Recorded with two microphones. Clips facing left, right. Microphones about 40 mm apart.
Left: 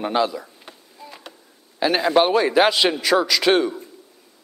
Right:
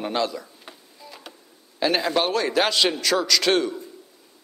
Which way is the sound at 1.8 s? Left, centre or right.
Centre.